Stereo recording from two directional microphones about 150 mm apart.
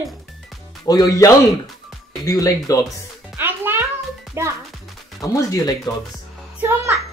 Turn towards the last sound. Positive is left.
turn(degrees=-15)  # may be behind; listen again after turning